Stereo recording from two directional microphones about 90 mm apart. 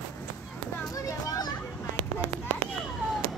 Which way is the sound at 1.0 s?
40° left (ahead or behind).